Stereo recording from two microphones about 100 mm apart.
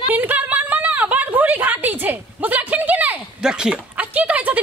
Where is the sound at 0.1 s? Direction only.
15° right (ahead or behind).